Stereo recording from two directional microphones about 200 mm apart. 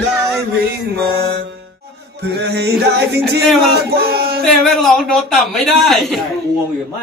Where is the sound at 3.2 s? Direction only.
Centre (ahead or behind).